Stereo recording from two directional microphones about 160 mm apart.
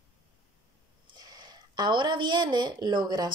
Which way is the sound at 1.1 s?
25° right (ahead or behind).